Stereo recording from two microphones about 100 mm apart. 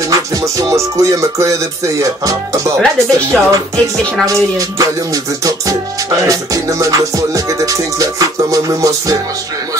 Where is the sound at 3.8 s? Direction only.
35° right (ahead or behind).